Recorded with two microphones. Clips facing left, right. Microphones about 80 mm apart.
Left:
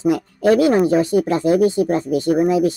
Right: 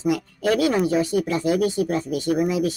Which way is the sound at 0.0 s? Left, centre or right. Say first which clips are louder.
Left 6 dB; left.